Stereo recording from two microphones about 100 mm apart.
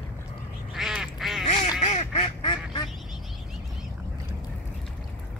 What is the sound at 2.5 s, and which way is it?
Quack, 50° left (ahead or behind).